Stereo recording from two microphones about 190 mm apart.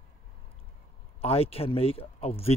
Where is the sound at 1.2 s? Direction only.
30° left (ahead or behind).